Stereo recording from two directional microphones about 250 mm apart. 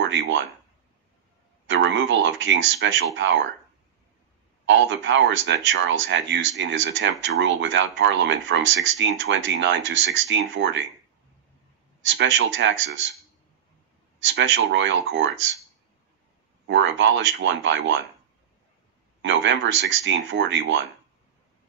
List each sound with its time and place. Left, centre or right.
1.7 s speech: right
4.6 s speech: right
12.1 s speech: right
14.2 s speech: right
16.6 s speech: right
19.2 s speech: right